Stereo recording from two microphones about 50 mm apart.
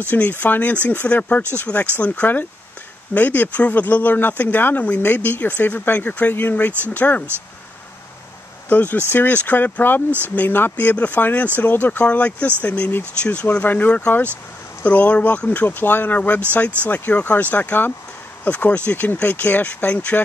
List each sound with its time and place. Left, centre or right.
0.1 s speech: left
8.6 s speech: left
13.5 s speech: left
16.2 s speech: left